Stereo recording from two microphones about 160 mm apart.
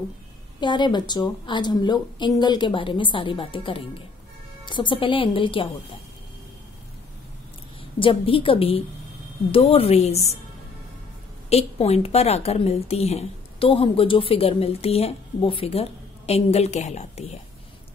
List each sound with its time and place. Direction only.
0.6 s a woman's voice: 30° left (ahead or behind)
8.0 s a woman's voice: 35° left (ahead or behind)
11.4 s a woman's voice: 40° left (ahead or behind)